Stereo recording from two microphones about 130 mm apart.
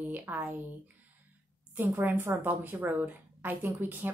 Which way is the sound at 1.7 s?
15° right (ahead or behind).